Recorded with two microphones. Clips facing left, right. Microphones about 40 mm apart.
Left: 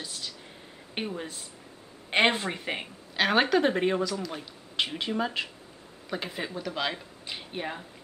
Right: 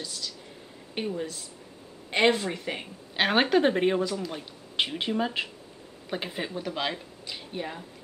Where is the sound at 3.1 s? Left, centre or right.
Centre.